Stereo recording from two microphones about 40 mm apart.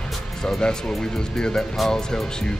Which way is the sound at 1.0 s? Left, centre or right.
Centre.